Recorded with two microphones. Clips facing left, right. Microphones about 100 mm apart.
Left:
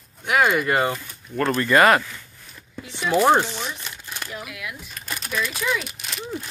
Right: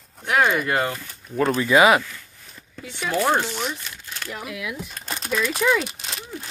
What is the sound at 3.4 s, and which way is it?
Speech, 15° right (ahead or behind).